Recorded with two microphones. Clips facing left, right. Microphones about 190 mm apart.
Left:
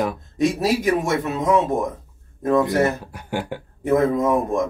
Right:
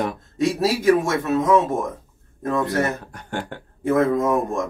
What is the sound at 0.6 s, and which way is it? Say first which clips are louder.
Speech: right 2 dB; 20° left (ahead or behind).